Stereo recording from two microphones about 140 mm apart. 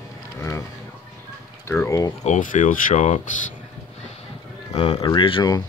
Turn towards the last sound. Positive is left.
turn(degrees=35)  # may be behind; listen again after turning